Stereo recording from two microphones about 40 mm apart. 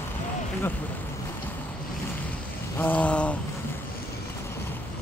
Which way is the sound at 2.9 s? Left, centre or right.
Left.